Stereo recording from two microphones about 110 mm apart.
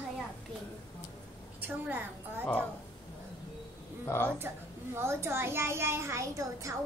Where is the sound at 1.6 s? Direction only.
20° right (ahead or behind).